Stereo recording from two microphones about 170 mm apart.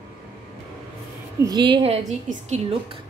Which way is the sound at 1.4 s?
25° right (ahead or behind).